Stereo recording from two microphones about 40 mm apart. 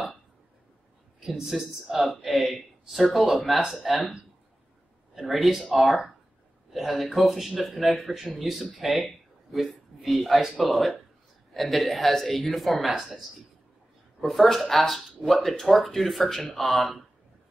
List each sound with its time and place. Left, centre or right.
1.4 s speech: centre
5.1 s speech: centre
14.2 s speech: centre